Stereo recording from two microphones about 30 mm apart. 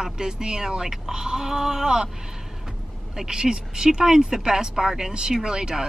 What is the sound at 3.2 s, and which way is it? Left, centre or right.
Speech, right.